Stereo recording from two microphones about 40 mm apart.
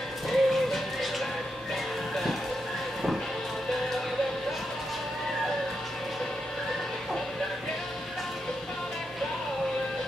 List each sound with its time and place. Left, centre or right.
0.3 s music: centre